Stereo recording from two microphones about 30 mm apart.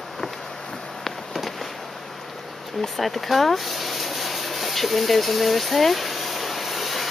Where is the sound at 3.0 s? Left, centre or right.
Centre.